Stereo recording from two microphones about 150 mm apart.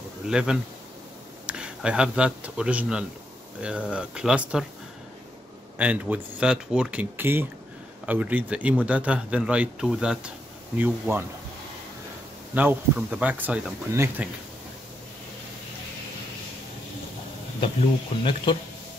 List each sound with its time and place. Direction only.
0.3 s a man's voice: 5° right (ahead or behind)
5.8 s a man's voice: 10° right (ahead or behind)
12.5 s a man's voice: 10° right (ahead or behind)
18.2 s a man's voice: 30° left (ahead or behind)